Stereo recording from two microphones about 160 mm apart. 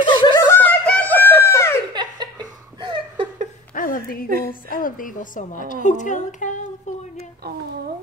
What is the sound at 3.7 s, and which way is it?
A woman's voice, 60° left (ahead or behind).